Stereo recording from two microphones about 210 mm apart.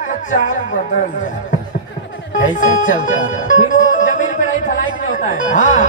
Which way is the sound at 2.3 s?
70° left (ahead or behind).